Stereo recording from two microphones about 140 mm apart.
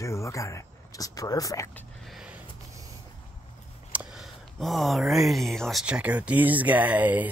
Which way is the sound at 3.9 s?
Centre (ahead or behind).